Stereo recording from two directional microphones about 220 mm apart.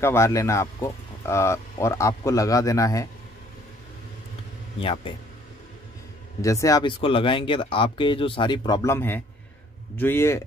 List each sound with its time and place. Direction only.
0.0 s speech: 10° left (ahead or behind)
4.7 s speech: 25° left (ahead or behind)
6.4 s speech: 15° left (ahead or behind)